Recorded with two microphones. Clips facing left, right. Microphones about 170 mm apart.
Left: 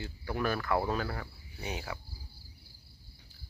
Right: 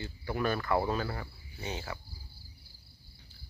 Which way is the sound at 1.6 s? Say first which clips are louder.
Even; 10° left (ahead or behind).